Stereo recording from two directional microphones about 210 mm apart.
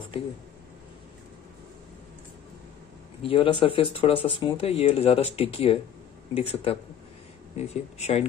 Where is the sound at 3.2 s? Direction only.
25° left (ahead or behind).